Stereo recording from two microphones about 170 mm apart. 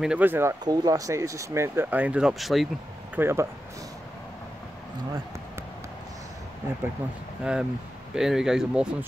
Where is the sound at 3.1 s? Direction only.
15° right (ahead or behind).